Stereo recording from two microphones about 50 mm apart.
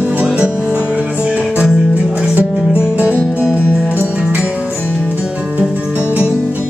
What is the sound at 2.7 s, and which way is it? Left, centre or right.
Music, right.